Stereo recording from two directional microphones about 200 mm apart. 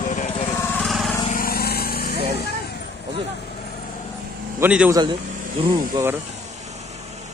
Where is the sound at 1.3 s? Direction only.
45° left (ahead or behind).